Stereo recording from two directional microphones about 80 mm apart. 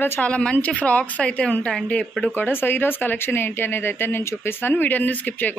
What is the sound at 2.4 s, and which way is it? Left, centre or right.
Speech, left.